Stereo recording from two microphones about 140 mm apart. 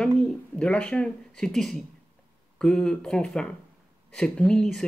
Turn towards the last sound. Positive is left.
turn(degrees=5)  # may be behind; listen again after turning